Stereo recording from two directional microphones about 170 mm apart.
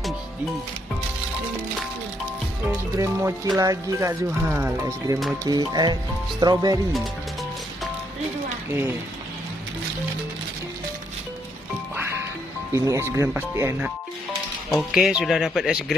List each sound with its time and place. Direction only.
3.0 s speech: 15° right (ahead or behind)
12.7 s speech: 20° right (ahead or behind); by 15.8 s centre (ahead or behind)